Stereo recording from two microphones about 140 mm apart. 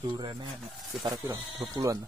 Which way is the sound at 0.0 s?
35° right (ahead or behind).